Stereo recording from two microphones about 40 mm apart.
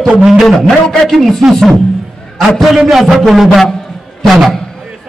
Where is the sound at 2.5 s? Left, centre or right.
Centre.